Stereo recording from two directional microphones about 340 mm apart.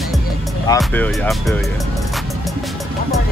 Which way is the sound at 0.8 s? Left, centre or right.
Centre.